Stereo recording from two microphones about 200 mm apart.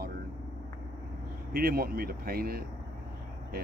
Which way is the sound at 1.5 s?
50° right (ahead or behind).